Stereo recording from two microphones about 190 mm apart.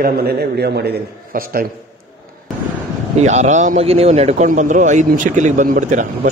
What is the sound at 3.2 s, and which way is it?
A man's voice, 40° right (ahead or behind).